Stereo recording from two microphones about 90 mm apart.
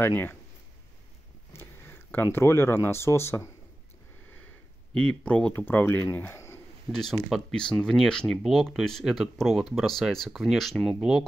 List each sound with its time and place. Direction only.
0.0 s speech: 25° left (ahead or behind)
1.5 s a sound: 25° left (ahead or behind)
2.3 s speech: 30° left (ahead or behind)
4.9 s speech: 15° left (ahead or behind)
6.3 s pigeon: 30° left (ahead or behind)
6.9 s speech: 5° left (ahead or behind)